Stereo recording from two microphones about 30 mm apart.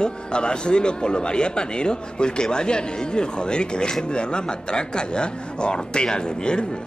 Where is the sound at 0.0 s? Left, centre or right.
Left.